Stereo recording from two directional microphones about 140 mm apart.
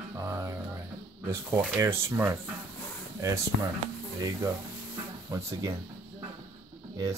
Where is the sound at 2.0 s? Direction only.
20° right (ahead or behind).